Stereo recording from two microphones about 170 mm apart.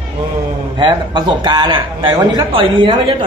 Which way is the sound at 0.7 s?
25° right (ahead or behind).